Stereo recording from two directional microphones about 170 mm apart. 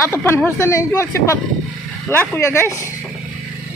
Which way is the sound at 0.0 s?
15° left (ahead or behind).